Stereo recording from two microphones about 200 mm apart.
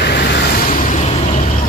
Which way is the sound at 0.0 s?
50° left (ahead or behind).